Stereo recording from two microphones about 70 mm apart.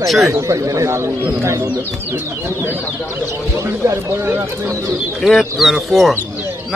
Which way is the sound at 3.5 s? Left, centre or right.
Right.